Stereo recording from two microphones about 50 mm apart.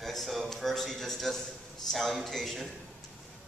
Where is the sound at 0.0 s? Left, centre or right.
Centre.